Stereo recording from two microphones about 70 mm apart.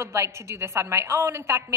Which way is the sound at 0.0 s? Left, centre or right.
Right.